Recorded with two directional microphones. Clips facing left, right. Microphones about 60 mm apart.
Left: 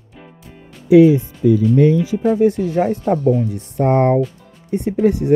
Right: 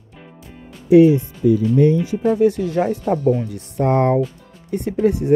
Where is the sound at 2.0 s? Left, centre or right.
Centre.